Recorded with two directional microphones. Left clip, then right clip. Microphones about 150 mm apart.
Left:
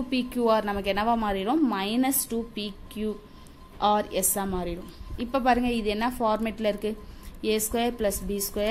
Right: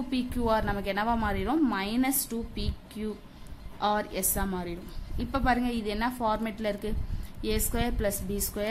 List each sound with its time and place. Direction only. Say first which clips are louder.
0.1 s a woman's voice: left 4 dB; 20° left (ahead or behind)